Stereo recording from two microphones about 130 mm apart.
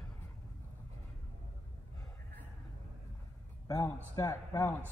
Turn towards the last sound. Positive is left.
turn(degrees=20)  # may be behind; listen again after turning